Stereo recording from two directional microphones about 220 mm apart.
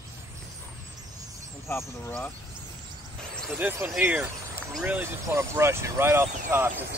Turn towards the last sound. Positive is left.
turn(degrees=-10)  # may be behind; listen again after turning